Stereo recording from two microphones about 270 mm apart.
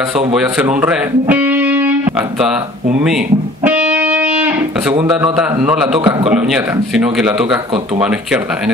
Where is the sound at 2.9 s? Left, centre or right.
Centre.